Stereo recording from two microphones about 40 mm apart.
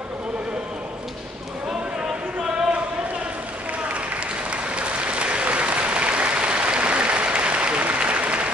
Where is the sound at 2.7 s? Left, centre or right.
Right.